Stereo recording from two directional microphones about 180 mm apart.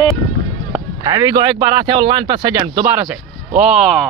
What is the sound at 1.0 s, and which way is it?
A man's voice, 20° right (ahead or behind).